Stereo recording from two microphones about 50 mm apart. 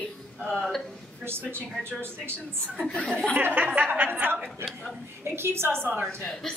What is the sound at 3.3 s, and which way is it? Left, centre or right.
A woman's voice, right.